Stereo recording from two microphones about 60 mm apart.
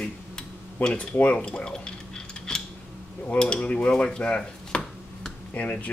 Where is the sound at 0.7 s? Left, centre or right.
Left.